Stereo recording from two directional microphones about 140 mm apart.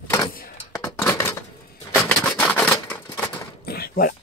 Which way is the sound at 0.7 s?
20° left (ahead or behind).